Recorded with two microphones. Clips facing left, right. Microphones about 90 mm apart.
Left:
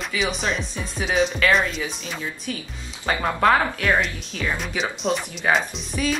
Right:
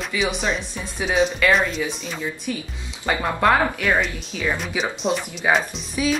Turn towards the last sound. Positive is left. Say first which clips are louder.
# right 2 dB
turn(degrees=0)  # may be behind; listen again after turning